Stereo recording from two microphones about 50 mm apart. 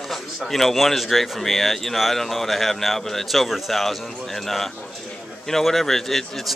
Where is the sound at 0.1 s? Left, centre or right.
Centre.